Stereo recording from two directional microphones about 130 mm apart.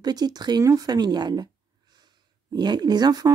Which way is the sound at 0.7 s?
30° right (ahead or behind).